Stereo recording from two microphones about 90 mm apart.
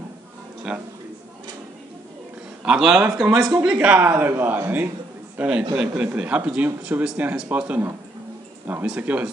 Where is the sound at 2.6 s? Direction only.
5° right (ahead or behind).